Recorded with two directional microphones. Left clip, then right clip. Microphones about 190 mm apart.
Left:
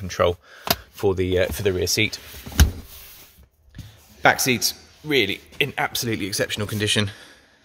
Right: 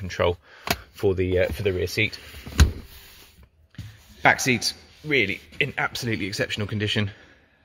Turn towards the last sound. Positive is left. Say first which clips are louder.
# left 4 dB
turn(degrees=10)  # may be behind; listen again after turning